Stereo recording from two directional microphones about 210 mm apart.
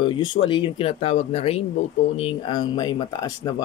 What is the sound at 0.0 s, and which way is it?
Speech, 25° left (ahead or behind).